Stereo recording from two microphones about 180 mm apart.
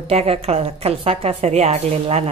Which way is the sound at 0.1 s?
35° right (ahead or behind).